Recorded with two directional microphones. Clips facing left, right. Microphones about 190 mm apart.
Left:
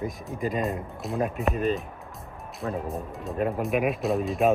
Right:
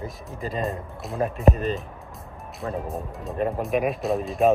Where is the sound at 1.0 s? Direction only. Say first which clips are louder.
Right 5 dB; centre (ahead or behind).